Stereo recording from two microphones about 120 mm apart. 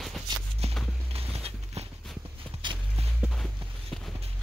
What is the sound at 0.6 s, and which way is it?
Walk, 60° right (ahead or behind).